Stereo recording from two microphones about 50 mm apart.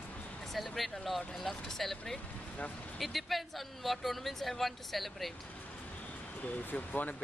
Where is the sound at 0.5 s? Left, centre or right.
Centre.